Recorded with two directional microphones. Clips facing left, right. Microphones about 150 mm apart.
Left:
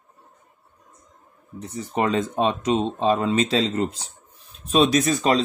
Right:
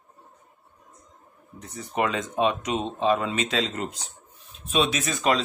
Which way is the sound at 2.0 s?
35° left (ahead or behind).